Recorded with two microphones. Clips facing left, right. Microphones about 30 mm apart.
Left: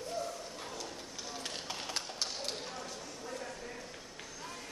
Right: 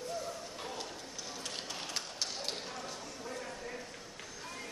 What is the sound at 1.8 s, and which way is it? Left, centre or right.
Tap, centre.